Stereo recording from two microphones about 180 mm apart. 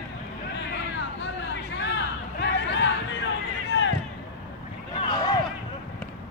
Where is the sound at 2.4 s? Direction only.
75° left (ahead or behind).